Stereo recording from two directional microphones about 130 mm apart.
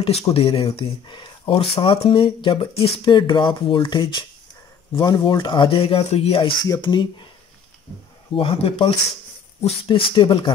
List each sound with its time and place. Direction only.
0.0 s speech: 50° left (ahead or behind)
6.6 s speech: 35° left (ahead or behind)
8.4 s speech: 45° left (ahead or behind)